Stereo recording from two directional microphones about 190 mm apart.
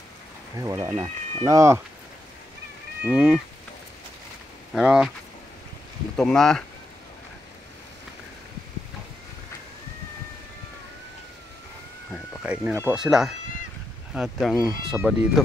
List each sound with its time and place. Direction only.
0.6 s speech: 15° right (ahead or behind)
3.1 s speech: 10° right (ahead or behind)
4.7 s speech: 5° right (ahead or behind)
6.1 s speech: centre (ahead or behind)
12.1 s speech: 10° right (ahead or behind)